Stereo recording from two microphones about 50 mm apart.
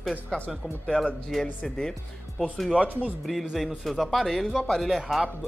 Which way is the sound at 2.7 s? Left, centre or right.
Right.